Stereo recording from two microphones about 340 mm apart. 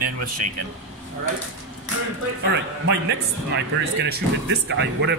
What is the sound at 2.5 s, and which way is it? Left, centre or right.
Speech, right.